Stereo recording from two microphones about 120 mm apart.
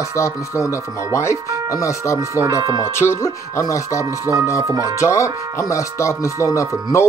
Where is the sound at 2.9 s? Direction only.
20° left (ahead or behind).